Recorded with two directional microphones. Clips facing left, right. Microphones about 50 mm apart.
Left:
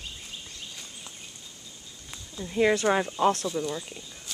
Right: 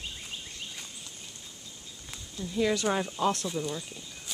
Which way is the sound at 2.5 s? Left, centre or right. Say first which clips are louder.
Left 5 dB; left.